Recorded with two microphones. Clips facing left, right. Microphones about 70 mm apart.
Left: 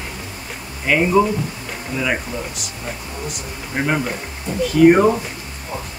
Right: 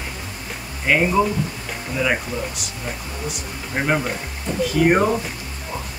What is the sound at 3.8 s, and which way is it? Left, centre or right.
Speech, centre.